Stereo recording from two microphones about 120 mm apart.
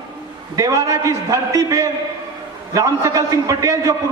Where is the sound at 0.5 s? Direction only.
30° right (ahead or behind).